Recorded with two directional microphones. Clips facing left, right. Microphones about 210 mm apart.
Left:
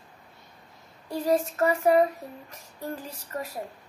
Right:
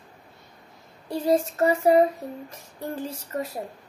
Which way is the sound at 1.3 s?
25° right (ahead or behind).